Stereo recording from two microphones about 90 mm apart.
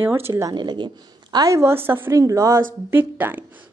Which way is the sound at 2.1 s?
35° right (ahead or behind).